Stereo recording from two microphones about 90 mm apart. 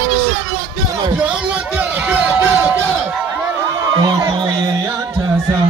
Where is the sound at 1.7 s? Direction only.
15° right (ahead or behind).